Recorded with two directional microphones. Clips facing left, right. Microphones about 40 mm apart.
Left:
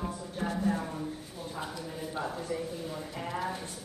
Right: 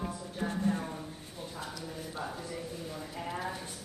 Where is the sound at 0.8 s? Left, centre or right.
Centre.